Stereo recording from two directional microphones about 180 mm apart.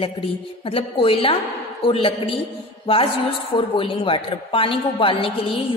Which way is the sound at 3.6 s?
30° left (ahead or behind).